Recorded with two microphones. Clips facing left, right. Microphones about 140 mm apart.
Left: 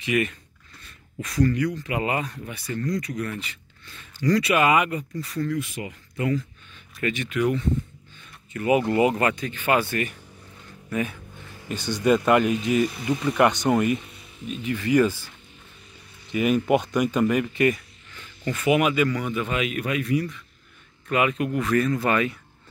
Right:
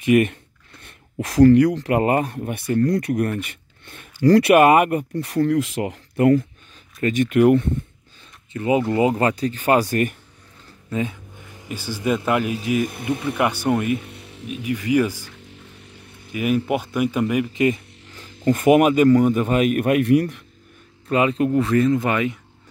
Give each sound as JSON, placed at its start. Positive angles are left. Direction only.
{"t": 0.0, "sound": "speech", "side_deg": -55}
{"t": 1.2, "sound": "speech", "side_deg": -75}
{"t": 2.0, "sound": "speech", "side_deg": -50}
{"t": 7.0, "sound": "speech", "side_deg": -45}
{"t": 8.5, "sound": "speech", "side_deg": -25}
{"t": 10.9, "sound": "a sound", "side_deg": -20}
{"t": 12.3, "sound": "speech", "side_deg": -5}
{"t": 12.8, "sound": "speech", "side_deg": -55}
{"t": 13.2, "sound": "speech", "side_deg": -5}
{"t": 14.0, "sound": "music", "side_deg": -70}
{"t": 14.5, "sound": "speech", "side_deg": -10}
{"t": 18.1, "sound": "speech", "side_deg": -40}
{"t": 21.1, "sound": "speech", "side_deg": -30}